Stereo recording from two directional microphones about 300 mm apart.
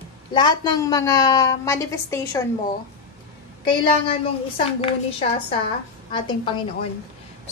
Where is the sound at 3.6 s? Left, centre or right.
Centre.